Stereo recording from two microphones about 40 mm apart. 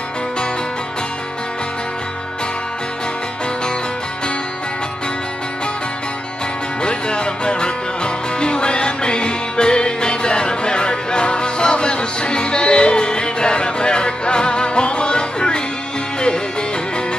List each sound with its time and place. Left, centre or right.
6.8 s music: left